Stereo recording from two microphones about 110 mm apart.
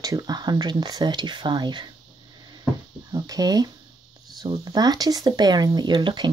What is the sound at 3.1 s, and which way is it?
Speech, 35° right (ahead or behind).